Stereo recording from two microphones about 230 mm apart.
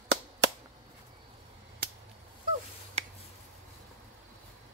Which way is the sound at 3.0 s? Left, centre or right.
Right.